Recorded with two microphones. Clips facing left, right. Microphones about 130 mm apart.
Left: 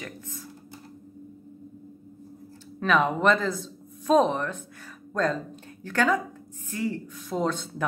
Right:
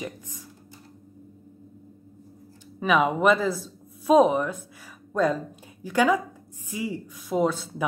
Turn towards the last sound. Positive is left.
turn(degrees=-10)  # may be behind; listen again after turning